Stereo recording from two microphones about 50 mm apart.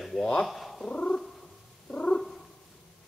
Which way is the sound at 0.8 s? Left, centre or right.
Centre.